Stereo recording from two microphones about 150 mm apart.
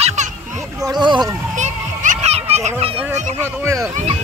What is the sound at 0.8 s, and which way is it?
Speech, 30° right (ahead or behind).